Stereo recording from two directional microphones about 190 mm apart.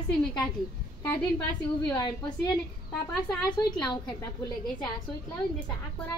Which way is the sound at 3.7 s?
20° left (ahead or behind).